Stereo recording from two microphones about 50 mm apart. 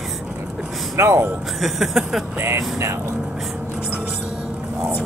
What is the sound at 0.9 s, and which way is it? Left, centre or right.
Speech, right.